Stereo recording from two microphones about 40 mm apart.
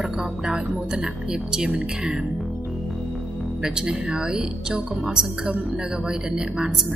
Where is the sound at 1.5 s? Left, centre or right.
Centre.